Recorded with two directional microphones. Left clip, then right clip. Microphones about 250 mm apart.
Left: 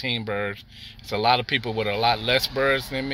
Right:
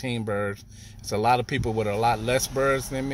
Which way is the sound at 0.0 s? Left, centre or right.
Centre.